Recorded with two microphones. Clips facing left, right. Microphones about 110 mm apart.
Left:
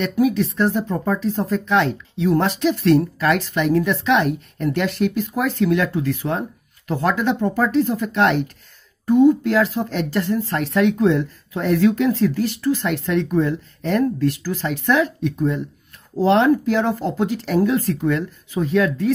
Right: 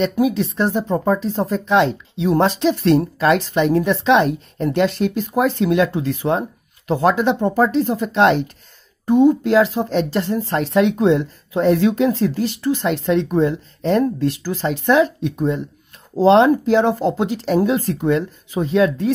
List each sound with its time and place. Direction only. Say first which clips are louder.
0.0 s a woman's voice: right 1 dB; 25° right (ahead or behind)